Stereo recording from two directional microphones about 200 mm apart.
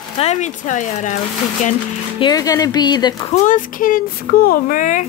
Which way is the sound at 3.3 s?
35° left (ahead or behind).